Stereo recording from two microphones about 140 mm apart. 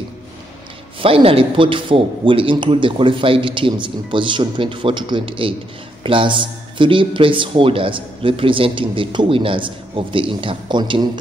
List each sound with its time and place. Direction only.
1.0 s a man's voice: 40° right (ahead or behind)